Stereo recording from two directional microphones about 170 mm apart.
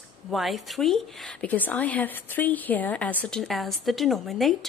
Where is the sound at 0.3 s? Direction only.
Centre (ahead or behind).